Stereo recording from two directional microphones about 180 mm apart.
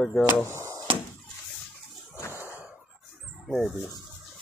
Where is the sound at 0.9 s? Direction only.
30° right (ahead or behind).